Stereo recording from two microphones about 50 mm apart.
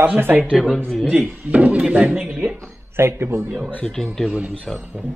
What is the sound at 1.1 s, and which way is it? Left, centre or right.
Speech, right.